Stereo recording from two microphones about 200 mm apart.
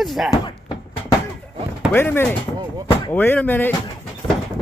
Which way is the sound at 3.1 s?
10° left (ahead or behind).